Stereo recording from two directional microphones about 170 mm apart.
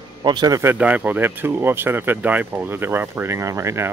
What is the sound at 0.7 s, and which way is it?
Speech, 10° right (ahead or behind).